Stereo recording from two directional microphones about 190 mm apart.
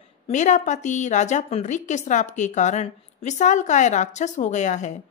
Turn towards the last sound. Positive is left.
turn(degrees=40)  # may be behind; listen again after turning